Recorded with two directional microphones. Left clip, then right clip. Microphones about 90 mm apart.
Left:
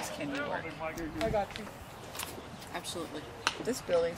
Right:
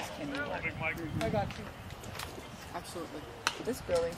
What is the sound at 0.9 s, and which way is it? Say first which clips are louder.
Speech: right 6 dB; 40° right (ahead or behind).